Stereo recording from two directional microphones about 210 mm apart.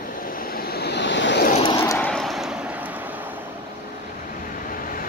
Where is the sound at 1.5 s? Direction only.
30° left (ahead or behind).